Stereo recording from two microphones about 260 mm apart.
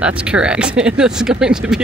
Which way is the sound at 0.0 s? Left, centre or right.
Centre.